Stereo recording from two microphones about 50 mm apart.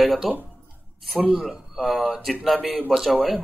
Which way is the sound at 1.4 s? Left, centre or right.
Centre.